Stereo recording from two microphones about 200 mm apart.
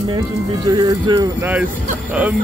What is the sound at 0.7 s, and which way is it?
Speech, 20° right (ahead or behind).